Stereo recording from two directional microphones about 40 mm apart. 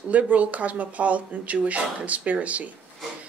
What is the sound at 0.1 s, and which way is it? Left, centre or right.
Speech, right.